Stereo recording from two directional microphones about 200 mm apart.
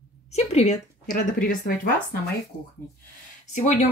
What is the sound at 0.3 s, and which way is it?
Speech, 30° left (ahead or behind).